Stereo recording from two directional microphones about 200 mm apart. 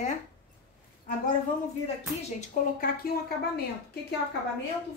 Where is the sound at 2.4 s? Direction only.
45° left (ahead or behind).